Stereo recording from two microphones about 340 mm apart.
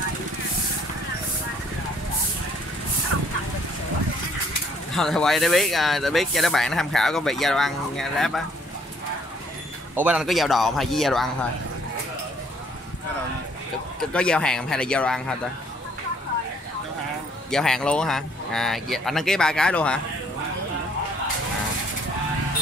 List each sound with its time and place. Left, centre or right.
3.1 s fowl: right
4.9 s speech: centre
9.9 s speech: centre
13.9 s speech: centre
17.5 s speech: centre